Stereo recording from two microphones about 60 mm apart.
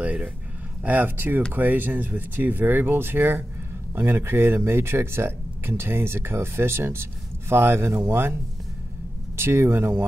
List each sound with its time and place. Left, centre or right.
0.0 s a sound: right
0.8 s speech: right
9.4 s speech: right